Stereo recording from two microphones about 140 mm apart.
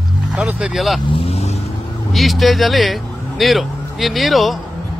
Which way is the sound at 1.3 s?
50° left (ahead or behind).